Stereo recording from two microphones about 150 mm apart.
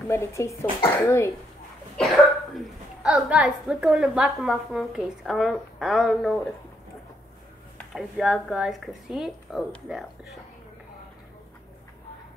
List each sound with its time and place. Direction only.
0.1 s speech: 20° left (ahead or behind)
2.5 s a woman's voice: 5° right (ahead or behind)
7.9 s a woman's voice: centre (ahead or behind)